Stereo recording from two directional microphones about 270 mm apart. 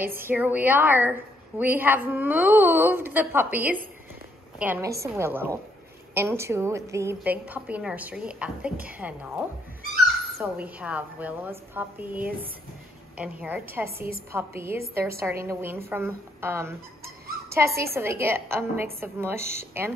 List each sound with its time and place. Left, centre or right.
0.0 s a woman's voice: centre
10.4 s a woman's voice: centre
13.8 s a woman's voice: right
14.3 s a woman's voice: centre